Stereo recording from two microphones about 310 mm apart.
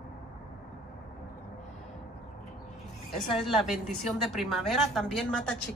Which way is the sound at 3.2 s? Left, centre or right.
Centre.